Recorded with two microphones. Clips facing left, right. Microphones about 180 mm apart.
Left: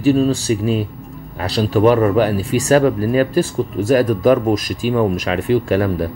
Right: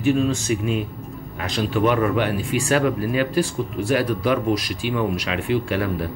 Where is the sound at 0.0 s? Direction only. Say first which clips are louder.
Left 5 dB; 35° left (ahead or behind).